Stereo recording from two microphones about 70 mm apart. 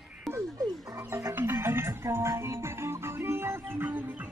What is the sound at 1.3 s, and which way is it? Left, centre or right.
Music, right.